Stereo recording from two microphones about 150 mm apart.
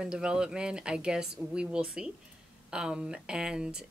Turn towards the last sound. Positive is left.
turn(degrees=-5)  # may be behind; listen again after turning